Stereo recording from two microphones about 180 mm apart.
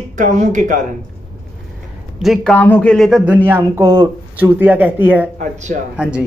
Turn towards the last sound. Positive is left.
turn(degrees=-5)  # may be behind; listen again after turning